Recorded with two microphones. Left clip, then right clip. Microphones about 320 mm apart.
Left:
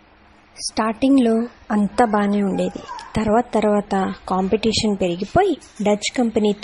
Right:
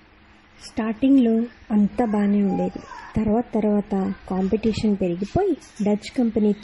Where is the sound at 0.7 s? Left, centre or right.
Left.